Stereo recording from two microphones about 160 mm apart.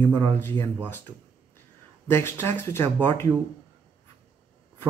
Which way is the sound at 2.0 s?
15° left (ahead or behind).